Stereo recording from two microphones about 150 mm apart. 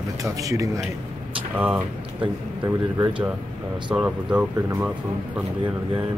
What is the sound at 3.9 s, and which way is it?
Speech, 5° right (ahead or behind).